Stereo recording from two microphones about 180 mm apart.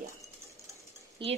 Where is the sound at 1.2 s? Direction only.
30° right (ahead or behind).